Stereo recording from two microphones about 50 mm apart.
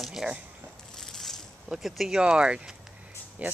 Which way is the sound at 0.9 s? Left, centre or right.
Centre.